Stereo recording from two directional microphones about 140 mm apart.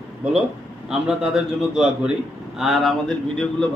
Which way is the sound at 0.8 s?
5° right (ahead or behind).